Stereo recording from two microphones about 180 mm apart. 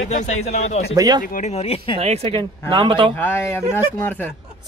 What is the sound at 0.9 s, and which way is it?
Speech, 20° right (ahead or behind).